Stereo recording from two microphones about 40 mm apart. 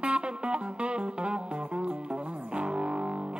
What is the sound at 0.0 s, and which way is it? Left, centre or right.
Music, right.